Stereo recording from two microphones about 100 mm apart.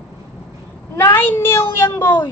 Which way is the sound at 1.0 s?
25° left (ahead or behind).